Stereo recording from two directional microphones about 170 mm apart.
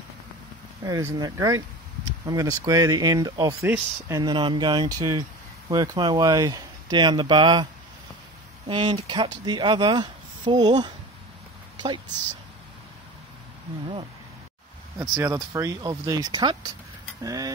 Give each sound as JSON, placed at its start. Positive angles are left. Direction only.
{"t": 0.8, "sound": "speech", "side_deg": -20}
{"t": 3.6, "sound": "speech", "side_deg": -10}
{"t": 4.2, "sound": "speech", "side_deg": -25}
{"t": 8.6, "sound": "speech", "side_deg": -25}
{"t": 15.0, "sound": "speech", "side_deg": -15}
{"t": 17.2, "sound": "mechanisms", "side_deg": -20}